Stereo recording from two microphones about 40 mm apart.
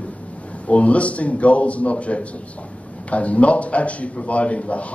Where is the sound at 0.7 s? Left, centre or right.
Left.